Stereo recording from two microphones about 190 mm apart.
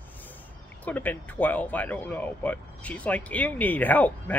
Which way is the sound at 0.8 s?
10° left (ahead or behind).